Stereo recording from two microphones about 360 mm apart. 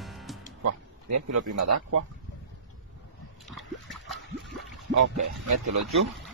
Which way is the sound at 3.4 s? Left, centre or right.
Centre.